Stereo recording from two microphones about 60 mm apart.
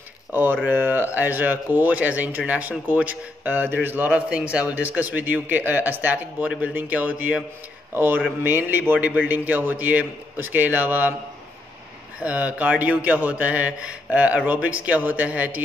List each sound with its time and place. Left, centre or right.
0.3 s a man's voice: right
4.3 s a man's voice: centre
7.9 s a man's voice: right
12.2 s a man's voice: right